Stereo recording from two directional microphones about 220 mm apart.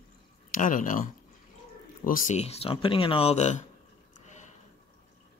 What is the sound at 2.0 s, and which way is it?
Speech, 35° left (ahead or behind).